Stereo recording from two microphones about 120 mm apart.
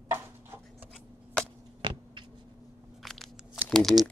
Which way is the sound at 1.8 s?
40° right (ahead or behind).